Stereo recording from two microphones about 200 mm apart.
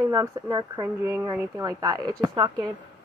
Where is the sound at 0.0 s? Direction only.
15° right (ahead or behind).